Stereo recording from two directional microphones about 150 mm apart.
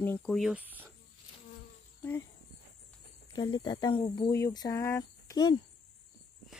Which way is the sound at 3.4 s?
30° left (ahead or behind).